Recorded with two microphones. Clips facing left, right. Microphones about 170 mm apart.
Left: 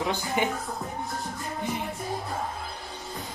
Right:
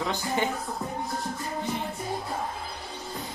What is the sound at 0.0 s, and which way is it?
Wild animals, 15° left (ahead or behind).